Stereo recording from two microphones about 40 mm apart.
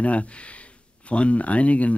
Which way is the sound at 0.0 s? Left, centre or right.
Left.